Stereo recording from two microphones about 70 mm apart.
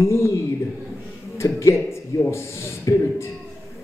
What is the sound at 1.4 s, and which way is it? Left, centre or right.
Music, left.